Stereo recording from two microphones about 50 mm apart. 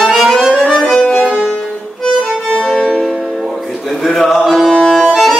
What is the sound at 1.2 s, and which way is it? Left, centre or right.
Music, right.